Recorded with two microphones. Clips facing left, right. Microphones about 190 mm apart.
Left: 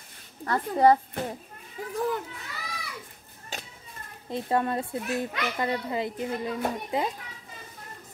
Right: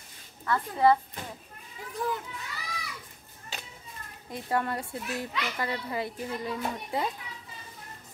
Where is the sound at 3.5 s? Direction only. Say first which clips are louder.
Left 3 dB; 45° left (ahead or behind).